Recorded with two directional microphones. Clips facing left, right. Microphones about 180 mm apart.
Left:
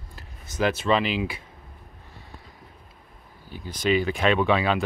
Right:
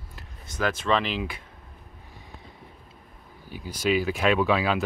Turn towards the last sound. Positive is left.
turn(degrees=-5)  # may be behind; listen again after turning